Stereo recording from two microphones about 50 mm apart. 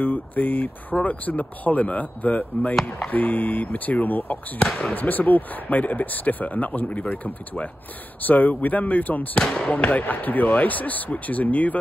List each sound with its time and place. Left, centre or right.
0.0 s speech: left
2.7 s speech: centre
3.1 s speech: left
4.6 s speech: centre
4.9 s speech: left
9.4 s speech: centre
9.8 s speech: left